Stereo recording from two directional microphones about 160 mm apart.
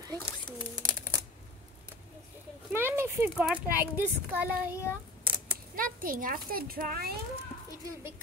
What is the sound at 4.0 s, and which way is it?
Speech, 10° right (ahead or behind).